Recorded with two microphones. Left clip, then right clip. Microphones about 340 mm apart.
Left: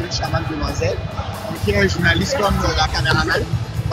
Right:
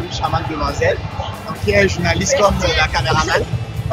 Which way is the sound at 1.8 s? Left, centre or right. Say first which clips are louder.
Right 2 dB; centre.